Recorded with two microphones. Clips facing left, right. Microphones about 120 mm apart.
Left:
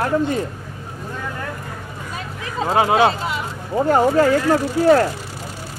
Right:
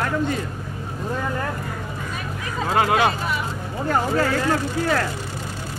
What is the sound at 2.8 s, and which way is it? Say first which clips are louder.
Speech: left 4 dB; 20° left (ahead or behind).